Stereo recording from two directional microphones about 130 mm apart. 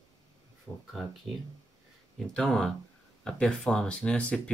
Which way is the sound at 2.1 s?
5° left (ahead or behind).